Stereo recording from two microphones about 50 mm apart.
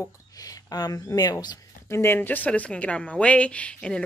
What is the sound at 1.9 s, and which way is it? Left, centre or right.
Speech, left.